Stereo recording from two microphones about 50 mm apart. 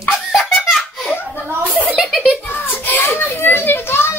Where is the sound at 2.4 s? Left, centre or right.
Left.